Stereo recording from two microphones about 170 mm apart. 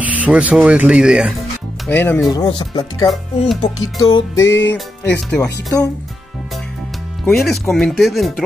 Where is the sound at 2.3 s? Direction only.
25° left (ahead or behind).